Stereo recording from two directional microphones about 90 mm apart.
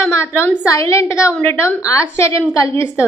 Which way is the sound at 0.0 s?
25° left (ahead or behind).